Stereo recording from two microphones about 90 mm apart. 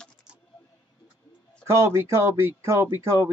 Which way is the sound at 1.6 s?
30° right (ahead or behind).